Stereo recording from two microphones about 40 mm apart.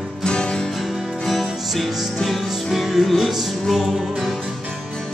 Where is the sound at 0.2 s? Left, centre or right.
Left.